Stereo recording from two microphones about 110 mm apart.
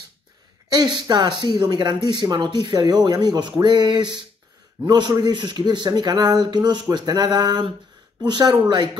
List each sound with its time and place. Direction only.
0.7 s speech: 40° right (ahead or behind)